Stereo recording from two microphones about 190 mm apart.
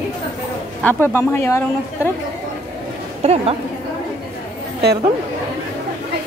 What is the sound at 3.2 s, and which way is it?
Speech, 30° right (ahead or behind).